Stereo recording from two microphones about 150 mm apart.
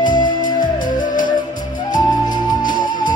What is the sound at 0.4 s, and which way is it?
Music, 60° left (ahead or behind).